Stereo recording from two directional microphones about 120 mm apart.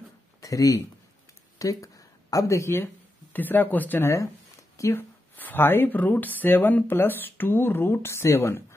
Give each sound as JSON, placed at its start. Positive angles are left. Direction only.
{"t": 0.4, "sound": "speech", "side_deg": 30}